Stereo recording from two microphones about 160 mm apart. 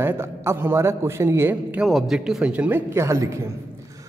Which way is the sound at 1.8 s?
Centre (ahead or behind).